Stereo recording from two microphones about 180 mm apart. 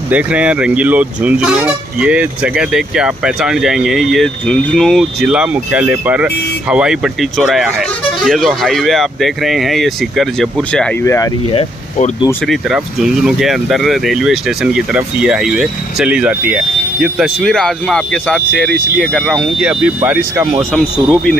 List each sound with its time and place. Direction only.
0.1 s speech: 5° right (ahead or behind); by 11.2 s 10° left (ahead or behind)
12.4 s speech: centre (ahead or behind)
20.7 s speech: 5° left (ahead or behind)